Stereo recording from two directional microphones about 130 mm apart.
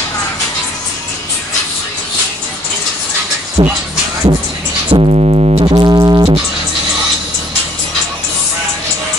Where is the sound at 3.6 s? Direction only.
40° right (ahead or behind).